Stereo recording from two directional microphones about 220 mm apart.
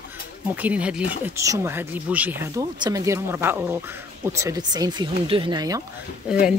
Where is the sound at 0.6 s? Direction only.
5° right (ahead or behind).